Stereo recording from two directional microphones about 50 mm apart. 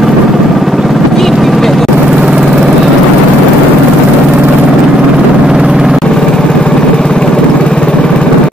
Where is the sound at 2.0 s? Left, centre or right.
Right.